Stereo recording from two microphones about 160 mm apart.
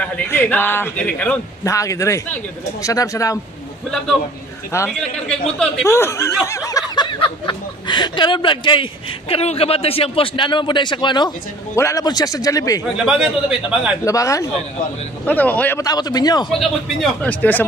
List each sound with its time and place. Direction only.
0.0 s a man's voice: 10° left (ahead or behind)
1.6 s a man's voice: 20° left (ahead or behind)
4.7 s a man's voice: 15° left (ahead or behind)
12.9 s speech: 5° right (ahead or behind)
14.0 s a man's voice: 20° left (ahead or behind)
15.2 s a man's voice: 10° left (ahead or behind)
15.8 s a man's voice: 25° left (ahead or behind)
16.5 s a man's voice: 5° left (ahead or behind)